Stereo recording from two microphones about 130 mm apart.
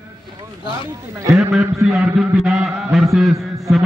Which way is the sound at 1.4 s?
Centre (ahead or behind).